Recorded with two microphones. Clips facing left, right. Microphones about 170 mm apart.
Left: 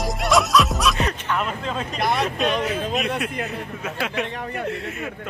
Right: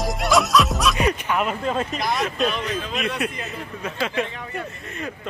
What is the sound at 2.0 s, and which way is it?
Speech, 60° left (ahead or behind).